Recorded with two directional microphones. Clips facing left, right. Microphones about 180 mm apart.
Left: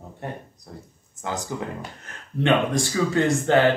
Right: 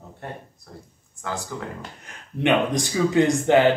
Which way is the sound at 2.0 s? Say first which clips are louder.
Even; 15° right (ahead or behind).